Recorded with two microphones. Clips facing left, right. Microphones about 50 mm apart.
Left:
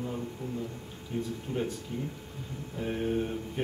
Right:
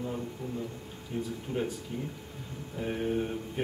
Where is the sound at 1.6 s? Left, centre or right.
Centre.